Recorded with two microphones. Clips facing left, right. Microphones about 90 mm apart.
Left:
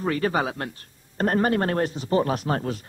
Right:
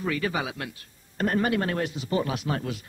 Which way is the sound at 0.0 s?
40° left (ahead or behind).